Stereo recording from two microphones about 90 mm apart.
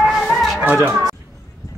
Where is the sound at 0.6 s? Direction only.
20° right (ahead or behind).